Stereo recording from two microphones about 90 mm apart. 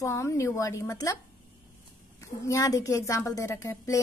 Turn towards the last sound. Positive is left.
turn(degrees=35)  # may be behind; listen again after turning